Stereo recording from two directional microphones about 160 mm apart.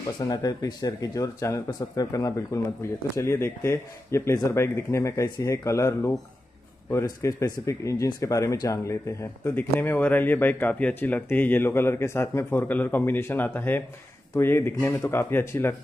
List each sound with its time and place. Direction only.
0.2 s speech: 25° left (ahead or behind)